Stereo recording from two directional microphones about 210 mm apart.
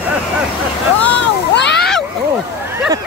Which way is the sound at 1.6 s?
55° left (ahead or behind).